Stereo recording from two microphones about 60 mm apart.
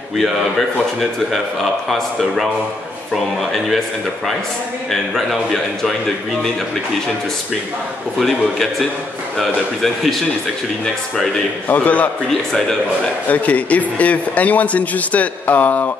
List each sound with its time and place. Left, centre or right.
1.3 s speech: centre
5.1 s speech: centre
9.4 s speech: centre
11.6 s a man's voice: left
12.3 s a man's voice: centre
13.3 s a man's voice: left